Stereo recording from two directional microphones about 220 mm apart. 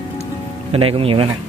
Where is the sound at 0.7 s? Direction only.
25° right (ahead or behind).